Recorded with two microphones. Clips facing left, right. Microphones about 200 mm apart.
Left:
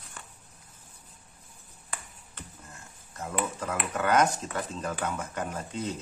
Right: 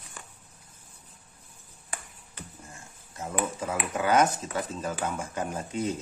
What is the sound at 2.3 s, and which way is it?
Speech, 10° right (ahead or behind).